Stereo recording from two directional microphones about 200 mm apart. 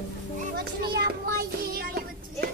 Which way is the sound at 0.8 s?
50° right (ahead or behind).